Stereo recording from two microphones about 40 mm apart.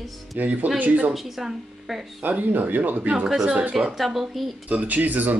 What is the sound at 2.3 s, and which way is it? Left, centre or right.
Speech, right.